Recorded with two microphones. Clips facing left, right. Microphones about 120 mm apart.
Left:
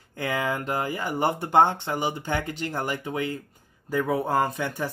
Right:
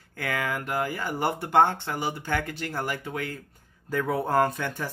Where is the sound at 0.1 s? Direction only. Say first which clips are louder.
Left 3 dB; 20° left (ahead or behind).